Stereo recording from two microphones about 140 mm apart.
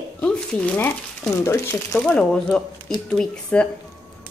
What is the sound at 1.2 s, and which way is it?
Speech, 20° left (ahead or behind).